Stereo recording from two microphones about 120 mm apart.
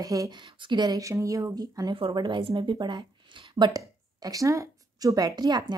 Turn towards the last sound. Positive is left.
turn(degrees=-35)  # may be behind; listen again after turning